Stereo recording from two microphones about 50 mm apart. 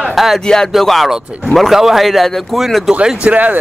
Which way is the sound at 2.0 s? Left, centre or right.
Centre.